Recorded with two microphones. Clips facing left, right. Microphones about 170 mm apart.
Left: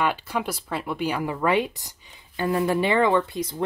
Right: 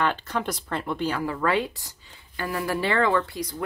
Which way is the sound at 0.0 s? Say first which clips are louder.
Left 1 dB; 10° left (ahead or behind).